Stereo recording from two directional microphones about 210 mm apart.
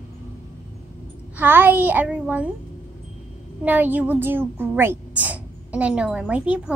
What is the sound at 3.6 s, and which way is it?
Speech, 10° right (ahead or behind).